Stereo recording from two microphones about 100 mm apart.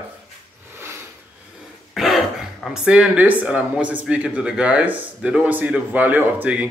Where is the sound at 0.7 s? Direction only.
25° right (ahead or behind).